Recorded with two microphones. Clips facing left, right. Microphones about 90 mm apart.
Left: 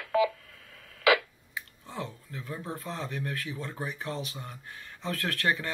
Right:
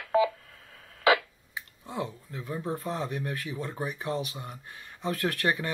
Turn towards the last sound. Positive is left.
turn(degrees=-15)  # may be behind; listen again after turning